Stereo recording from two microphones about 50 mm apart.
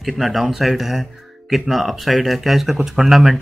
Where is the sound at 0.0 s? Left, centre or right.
Centre.